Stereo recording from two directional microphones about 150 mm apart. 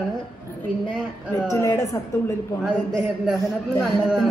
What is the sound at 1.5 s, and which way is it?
Speech, 20° left (ahead or behind).